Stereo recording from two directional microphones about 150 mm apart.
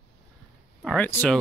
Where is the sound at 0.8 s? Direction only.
10° left (ahead or behind).